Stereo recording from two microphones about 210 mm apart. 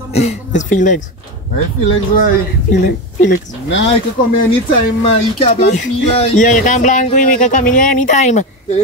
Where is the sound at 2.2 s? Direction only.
50° left (ahead or behind).